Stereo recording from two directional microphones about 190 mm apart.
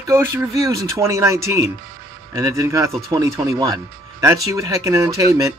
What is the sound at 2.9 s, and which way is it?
Speech, centre (ahead or behind).